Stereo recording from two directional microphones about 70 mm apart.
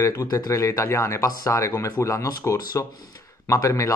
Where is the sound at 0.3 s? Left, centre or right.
Left.